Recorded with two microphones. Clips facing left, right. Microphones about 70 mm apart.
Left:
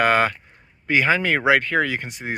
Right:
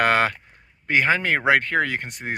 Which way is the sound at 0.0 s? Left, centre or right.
Right.